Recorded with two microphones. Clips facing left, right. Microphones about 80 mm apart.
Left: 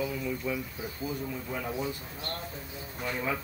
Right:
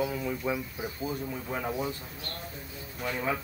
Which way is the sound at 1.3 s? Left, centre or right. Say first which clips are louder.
Right 2 dB; centre.